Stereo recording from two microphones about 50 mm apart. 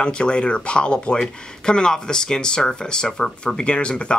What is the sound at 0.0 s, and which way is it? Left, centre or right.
Speech, centre.